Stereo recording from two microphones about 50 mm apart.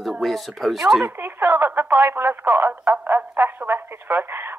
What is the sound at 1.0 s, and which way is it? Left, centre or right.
Speech, right.